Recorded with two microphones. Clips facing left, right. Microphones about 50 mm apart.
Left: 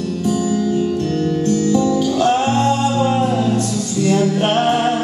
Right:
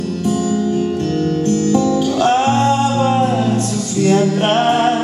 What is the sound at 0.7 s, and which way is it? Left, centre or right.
Music, right.